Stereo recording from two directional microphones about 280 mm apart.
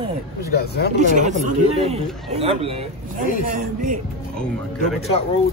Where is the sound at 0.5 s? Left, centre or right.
Left.